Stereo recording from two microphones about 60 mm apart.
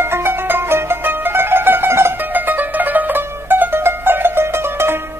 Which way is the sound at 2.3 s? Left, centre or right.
Right.